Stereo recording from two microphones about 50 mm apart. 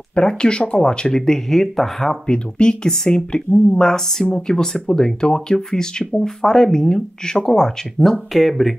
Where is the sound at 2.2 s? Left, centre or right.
Centre.